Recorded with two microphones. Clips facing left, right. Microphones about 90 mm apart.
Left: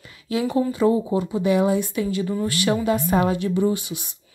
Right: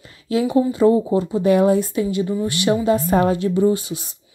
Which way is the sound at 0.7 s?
35° right (ahead or behind).